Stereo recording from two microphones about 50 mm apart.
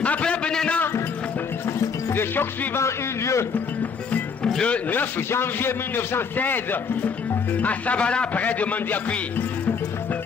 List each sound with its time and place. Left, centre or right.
0.0 s a sound: left
2.1 s a man's voice: left
2.8 s a man's voice: left
4.6 s a man's voice: left
5.3 s a man's voice: left